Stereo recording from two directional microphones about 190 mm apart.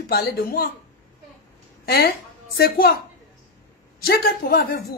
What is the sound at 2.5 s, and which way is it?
Speech, 55° left (ahead or behind).